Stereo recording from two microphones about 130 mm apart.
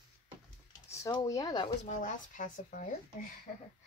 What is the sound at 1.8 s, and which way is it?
Speech, 75° left (ahead or behind).